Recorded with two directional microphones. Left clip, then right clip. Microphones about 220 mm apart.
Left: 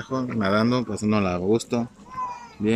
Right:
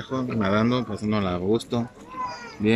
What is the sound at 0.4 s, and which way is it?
Speech, 5° left (ahead or behind).